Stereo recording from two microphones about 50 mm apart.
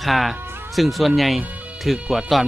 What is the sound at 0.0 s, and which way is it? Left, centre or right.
Speech, centre.